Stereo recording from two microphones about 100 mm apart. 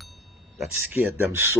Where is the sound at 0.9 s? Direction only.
20° right (ahead or behind).